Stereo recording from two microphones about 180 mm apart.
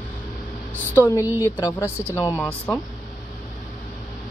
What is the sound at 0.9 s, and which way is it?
Speech, 15° left (ahead or behind).